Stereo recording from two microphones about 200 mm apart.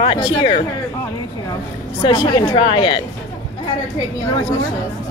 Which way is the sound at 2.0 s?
20° left (ahead or behind).